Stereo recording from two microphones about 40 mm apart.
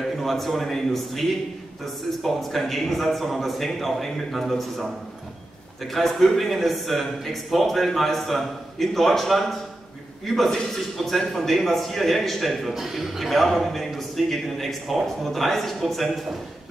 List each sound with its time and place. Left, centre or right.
0.0 s a man's voice: centre
2.2 s a man's voice: centre
5.9 s a man's voice: centre